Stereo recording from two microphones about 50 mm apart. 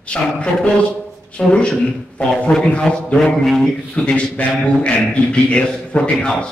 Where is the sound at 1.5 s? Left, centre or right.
Left.